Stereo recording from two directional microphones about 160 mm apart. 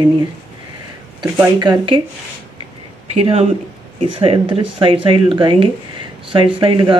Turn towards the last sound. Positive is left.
turn(degrees=-35)  # may be behind; listen again after turning